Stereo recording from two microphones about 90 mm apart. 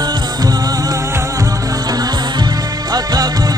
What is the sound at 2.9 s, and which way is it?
Music, 45° right (ahead or behind).